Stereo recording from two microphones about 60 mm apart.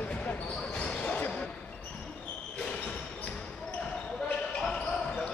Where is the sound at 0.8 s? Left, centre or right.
Centre.